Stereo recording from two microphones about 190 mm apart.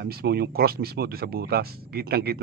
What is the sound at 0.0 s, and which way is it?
Speech, 55° right (ahead or behind).